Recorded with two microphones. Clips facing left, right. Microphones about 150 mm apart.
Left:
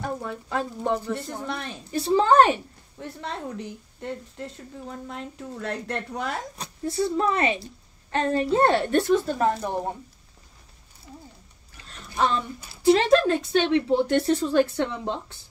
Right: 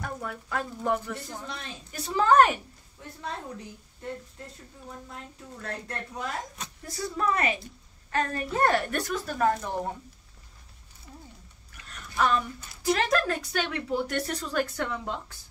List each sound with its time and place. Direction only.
0.0 s a woman's voice: 25° left (ahead or behind)
1.1 s speech: 60° left (ahead or behind)
1.9 s a woman's voice: 30° left (ahead or behind)
3.0 s a woman's voice: 75° left (ahead or behind)
6.5 s a woman's voice: 30° left (ahead or behind)
11.7 s a sound: 30° left (ahead or behind)
12.8 s a woman's voice: 25° left (ahead or behind)